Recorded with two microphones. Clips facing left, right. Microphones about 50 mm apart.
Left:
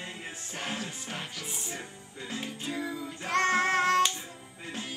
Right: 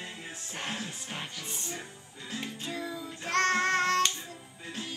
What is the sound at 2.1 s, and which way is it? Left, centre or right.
Music, centre.